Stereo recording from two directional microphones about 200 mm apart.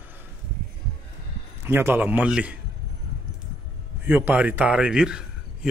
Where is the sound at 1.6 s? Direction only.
10° right (ahead or behind).